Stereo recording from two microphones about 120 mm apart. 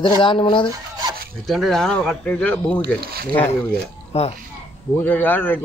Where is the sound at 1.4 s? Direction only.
Centre (ahead or behind).